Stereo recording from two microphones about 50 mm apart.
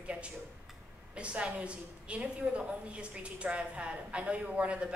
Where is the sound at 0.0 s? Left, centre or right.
Right.